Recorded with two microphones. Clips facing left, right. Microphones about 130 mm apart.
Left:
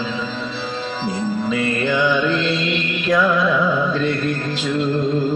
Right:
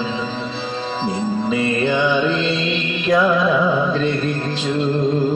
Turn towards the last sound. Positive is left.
turn(degrees=-25)  # may be behind; listen again after turning